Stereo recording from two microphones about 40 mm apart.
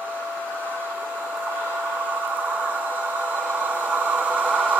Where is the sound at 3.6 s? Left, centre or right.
Right.